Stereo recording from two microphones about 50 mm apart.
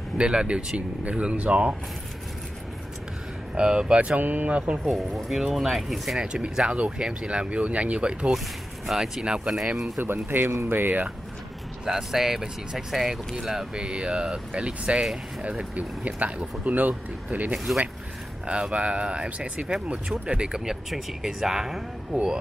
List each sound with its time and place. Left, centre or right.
0.2 s speech: right
3.5 s speech: centre
4.2 s speech: right
4.8 s speech: centre
6.1 s speech: centre
8.8 s speech: centre
9.9 s speech: right
11.8 s speech: centre
13.7 s speech: centre; by 17.6 s right
18.5 s speech: right